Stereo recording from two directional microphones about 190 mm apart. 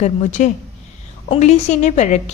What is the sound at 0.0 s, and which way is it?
A woman's voice, 40° left (ahead or behind).